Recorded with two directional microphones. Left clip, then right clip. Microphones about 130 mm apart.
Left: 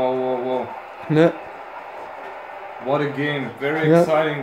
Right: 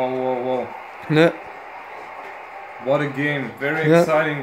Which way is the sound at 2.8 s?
90° right.